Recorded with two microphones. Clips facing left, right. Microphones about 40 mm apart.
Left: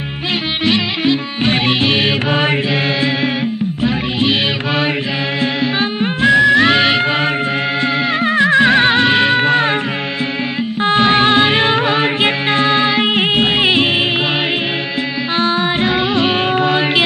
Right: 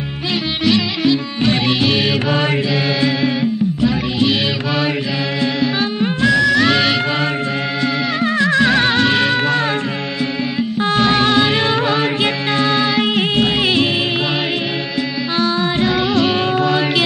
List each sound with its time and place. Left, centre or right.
0.7 s music: left
3.8 s music: left
10.8 s music: left
15.3 s music: left